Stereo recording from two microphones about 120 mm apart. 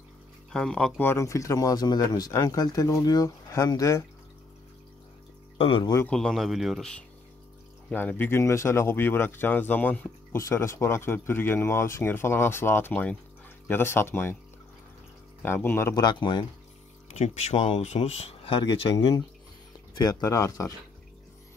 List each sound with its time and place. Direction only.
0.5 s speech: 5° left (ahead or behind)
1.0 s speech: 25° left (ahead or behind)
5.6 s speech: 50° left (ahead or behind)
6.0 s speech: 5° left (ahead or behind); by 14.3 s 20° left (ahead or behind)
15.4 s speech: 20° left (ahead or behind)
16.0 s speech: 35° left (ahead or behind)
17.1 s speech: 65° left (ahead or behind)
18.7 s speech: 40° left (ahead or behind)